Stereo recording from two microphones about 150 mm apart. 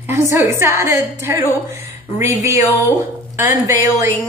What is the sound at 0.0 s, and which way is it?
A woman's voice, 20° right (ahead or behind).